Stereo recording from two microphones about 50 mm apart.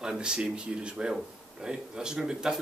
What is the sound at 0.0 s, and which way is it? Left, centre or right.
Speech, centre.